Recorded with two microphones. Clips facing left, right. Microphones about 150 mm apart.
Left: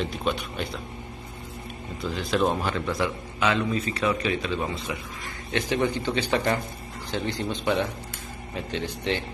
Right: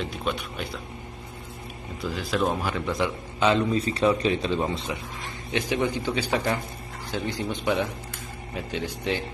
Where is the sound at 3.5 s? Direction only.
30° right (ahead or behind).